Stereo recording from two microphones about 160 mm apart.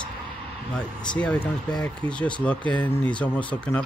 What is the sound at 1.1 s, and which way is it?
Speech, 5° left (ahead or behind).